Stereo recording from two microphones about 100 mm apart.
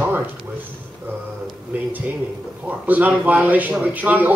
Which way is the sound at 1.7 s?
15° right (ahead or behind).